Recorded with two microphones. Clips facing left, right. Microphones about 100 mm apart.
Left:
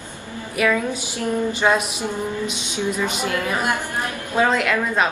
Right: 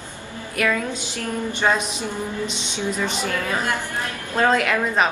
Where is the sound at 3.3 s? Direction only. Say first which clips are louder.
Left 2 dB; 15° left (ahead or behind).